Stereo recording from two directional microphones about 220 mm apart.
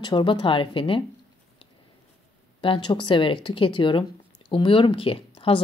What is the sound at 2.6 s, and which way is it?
Speech, 20° left (ahead or behind).